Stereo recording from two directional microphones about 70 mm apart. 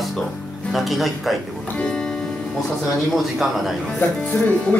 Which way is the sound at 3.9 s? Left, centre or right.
Left.